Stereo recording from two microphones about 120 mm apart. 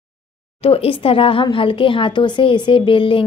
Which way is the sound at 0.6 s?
55° left (ahead or behind).